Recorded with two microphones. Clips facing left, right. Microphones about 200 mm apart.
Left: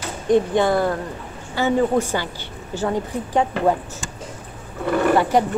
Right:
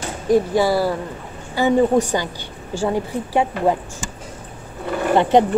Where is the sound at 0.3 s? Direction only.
5° right (ahead or behind).